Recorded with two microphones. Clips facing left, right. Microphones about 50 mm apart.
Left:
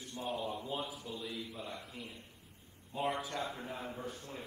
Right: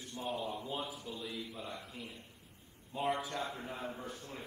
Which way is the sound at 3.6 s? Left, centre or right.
Right.